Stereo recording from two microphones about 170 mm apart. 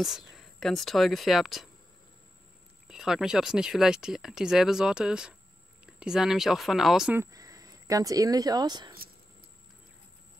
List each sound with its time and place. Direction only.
0.0 s speech: centre (ahead or behind)
2.9 s speech: 5° right (ahead or behind)
7.2 s speech: 20° right (ahead or behind)